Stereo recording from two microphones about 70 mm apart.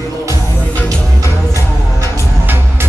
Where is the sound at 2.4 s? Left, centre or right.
Right.